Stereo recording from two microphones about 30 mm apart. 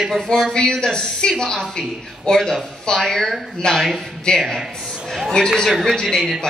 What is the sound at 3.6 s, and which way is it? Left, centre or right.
A woman's voice, left.